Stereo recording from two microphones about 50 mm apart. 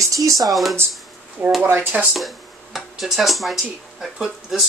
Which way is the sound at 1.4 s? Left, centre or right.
Right.